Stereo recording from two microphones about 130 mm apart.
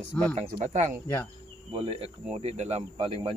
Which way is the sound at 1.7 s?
40° right (ahead or behind).